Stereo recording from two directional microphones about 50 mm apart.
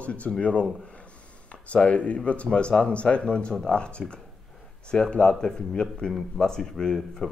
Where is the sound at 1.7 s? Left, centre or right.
Left.